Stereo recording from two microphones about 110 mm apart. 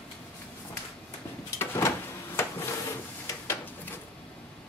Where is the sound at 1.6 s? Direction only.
25° left (ahead or behind).